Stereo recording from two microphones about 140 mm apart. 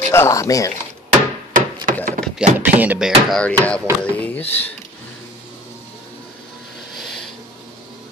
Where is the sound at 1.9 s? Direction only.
75° right (ahead or behind).